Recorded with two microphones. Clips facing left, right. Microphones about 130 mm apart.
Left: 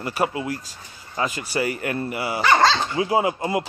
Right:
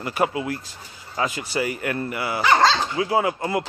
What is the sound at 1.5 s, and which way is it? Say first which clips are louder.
Speech: left 1 dB; 40° left (ahead or behind).